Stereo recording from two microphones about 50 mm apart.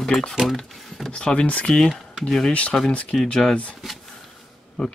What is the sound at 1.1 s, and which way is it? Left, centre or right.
Speech, centre.